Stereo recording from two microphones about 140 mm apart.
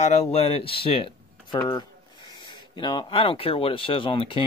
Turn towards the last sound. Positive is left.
turn(degrees=40)  # may be behind; listen again after turning